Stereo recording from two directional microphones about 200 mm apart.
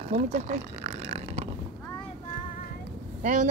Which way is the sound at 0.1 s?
35° right (ahead or behind).